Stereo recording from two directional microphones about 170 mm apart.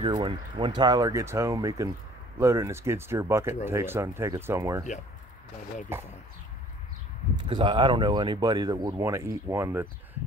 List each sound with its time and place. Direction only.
0.0 s speech: 30° right (ahead or behind)
7.4 s speech: 30° right (ahead or behind)